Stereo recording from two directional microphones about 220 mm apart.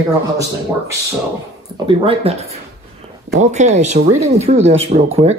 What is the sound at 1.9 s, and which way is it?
Speech, 25° right (ahead or behind).